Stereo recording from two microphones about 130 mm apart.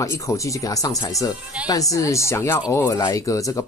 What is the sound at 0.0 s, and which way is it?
Speech, 25° left (ahead or behind).